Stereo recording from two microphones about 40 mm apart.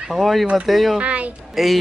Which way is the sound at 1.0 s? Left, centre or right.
Right.